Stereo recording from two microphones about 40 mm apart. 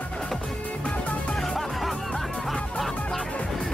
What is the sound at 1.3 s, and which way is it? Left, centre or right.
Music, centre.